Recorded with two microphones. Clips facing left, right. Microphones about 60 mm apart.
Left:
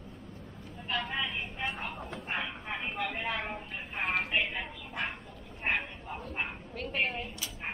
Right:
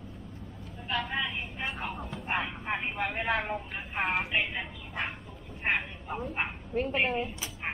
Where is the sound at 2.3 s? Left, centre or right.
Right.